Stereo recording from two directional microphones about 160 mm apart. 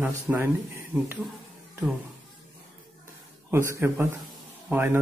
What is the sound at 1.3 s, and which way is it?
Music, centre (ahead or behind).